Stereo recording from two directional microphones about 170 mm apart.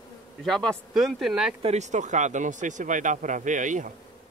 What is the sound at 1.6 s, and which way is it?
Speech, 40° right (ahead or behind).